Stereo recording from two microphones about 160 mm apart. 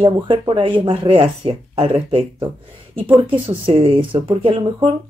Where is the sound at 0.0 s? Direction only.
35° right (ahead or behind).